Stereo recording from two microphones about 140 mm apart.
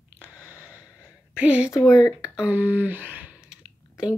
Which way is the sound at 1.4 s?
10° right (ahead or behind).